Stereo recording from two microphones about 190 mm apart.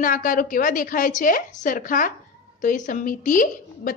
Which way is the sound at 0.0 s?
45° left (ahead or behind).